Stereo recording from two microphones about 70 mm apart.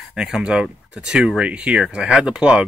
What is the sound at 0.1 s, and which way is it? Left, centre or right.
Speech, centre.